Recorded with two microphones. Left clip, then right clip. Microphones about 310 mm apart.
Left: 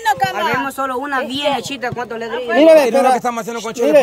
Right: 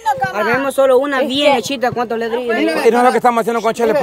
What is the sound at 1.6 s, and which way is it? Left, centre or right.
Speech, centre.